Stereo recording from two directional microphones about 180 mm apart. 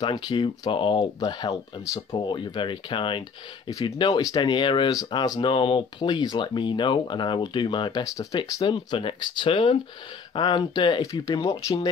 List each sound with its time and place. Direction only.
0.0 s speech: 20° left (ahead or behind)